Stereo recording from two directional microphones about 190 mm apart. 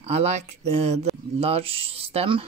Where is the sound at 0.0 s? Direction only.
35° right (ahead or behind).